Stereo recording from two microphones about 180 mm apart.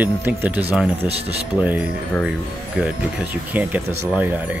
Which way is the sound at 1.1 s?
35° right (ahead or behind).